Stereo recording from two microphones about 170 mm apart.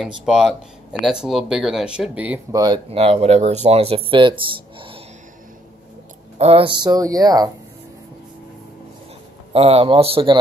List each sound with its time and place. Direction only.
0.0 s speech: 5° right (ahead or behind)
2.5 s speech: 25° right (ahead or behind)
6.3 s speech: 35° right (ahead or behind)
9.5 s speech: 35° right (ahead or behind)